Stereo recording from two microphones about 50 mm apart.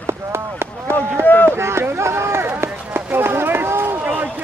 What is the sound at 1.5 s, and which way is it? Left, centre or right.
Run, right.